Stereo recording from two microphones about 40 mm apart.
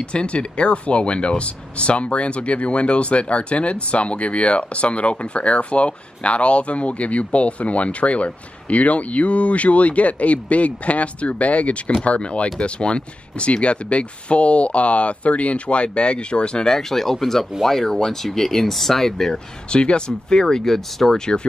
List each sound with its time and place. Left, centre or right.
0.0 s speech: left
16.9 s speech: centre
19.3 s speech: left; by 21.2 s centre